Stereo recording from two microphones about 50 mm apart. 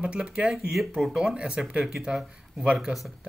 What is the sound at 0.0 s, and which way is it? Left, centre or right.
Speech, centre.